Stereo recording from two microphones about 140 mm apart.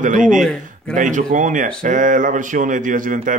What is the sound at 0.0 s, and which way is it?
Speech, 65° right (ahead or behind).